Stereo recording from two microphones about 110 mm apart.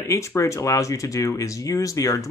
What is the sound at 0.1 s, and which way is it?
Speech, 25° left (ahead or behind).